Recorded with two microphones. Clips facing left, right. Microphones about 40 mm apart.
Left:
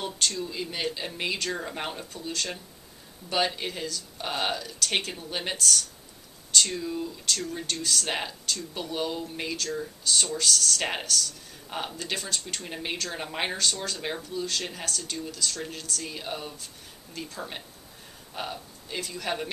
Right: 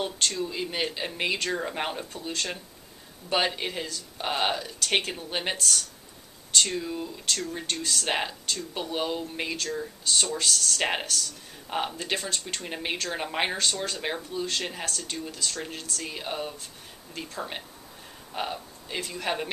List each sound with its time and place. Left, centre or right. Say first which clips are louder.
0.0 s speech: right 2 dB; centre